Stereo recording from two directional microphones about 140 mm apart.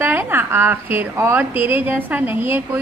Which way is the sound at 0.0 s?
15° right (ahead or behind).